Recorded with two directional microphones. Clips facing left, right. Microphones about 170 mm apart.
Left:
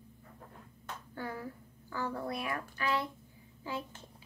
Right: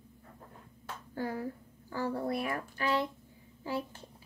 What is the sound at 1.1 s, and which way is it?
Speech, 35° right (ahead or behind).